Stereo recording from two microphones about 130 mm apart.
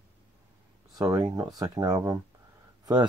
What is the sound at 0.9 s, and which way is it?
Speech, 25° right (ahead or behind).